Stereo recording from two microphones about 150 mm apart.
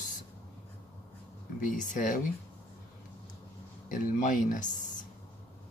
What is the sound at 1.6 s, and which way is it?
Speech, 65° left (ahead or behind).